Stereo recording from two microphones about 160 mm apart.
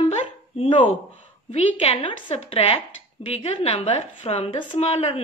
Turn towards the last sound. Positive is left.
turn(degrees=40)  # may be behind; listen again after turning